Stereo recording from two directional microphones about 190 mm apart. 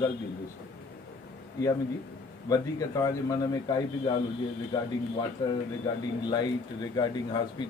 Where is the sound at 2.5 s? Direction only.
20° left (ahead or behind).